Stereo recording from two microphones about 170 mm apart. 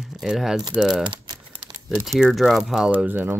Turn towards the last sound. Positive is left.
turn(degrees=-10)  # may be behind; listen again after turning